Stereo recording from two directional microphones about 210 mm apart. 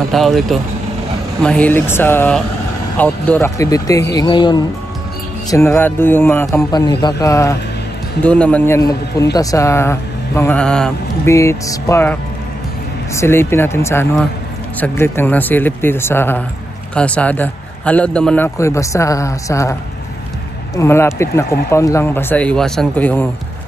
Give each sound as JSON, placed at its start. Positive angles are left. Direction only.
{"t": 0.1, "sound": "speech", "side_deg": 0}
{"t": 11.3, "sound": "speech", "side_deg": 15}
{"t": 20.7, "sound": "speech", "side_deg": 10}